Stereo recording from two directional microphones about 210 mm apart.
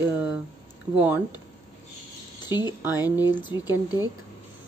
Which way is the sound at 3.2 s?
10° right (ahead or behind).